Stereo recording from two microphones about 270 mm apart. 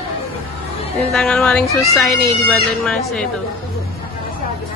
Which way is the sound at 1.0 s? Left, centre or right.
Centre.